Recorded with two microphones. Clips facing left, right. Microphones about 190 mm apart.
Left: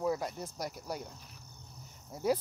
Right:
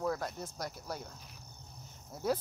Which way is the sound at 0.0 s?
10° left (ahead or behind).